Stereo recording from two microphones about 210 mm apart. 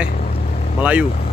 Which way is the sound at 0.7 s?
5° right (ahead or behind).